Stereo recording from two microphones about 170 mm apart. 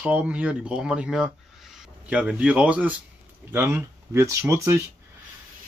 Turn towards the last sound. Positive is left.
turn(degrees=-15)  # may be behind; listen again after turning